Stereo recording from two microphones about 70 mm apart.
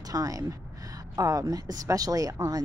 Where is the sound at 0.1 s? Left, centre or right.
Right.